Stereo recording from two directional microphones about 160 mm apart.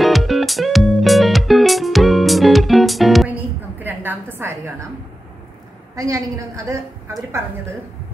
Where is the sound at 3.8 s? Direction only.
10° right (ahead or behind).